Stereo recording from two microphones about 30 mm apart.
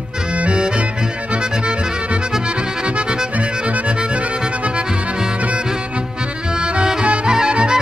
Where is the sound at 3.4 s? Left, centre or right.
Right.